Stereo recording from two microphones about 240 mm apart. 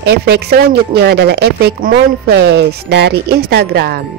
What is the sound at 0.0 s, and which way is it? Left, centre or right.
Speech, right.